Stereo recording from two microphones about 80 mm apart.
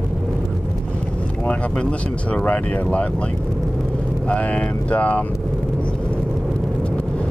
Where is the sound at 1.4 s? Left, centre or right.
Centre.